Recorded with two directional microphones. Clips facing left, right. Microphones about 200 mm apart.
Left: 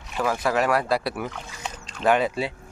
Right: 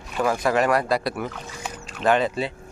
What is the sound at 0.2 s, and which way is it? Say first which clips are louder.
Speech: right 2 dB; centre (ahead or behind).